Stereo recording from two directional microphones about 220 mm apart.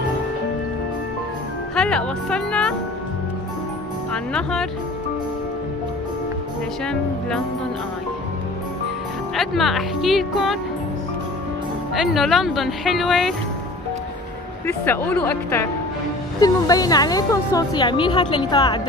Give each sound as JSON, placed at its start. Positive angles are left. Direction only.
{"t": 1.8, "sound": "speech", "side_deg": 5}
{"t": 4.1, "sound": "speech", "side_deg": 5}
{"t": 6.9, "sound": "speech", "side_deg": 5}
{"t": 9.3, "sound": "speech", "side_deg": 0}
{"t": 11.9, "sound": "speech", "side_deg": 0}
{"t": 14.7, "sound": "speech", "side_deg": 10}